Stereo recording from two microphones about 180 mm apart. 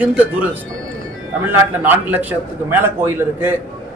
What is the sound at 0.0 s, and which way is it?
Speech, 5° right (ahead or behind).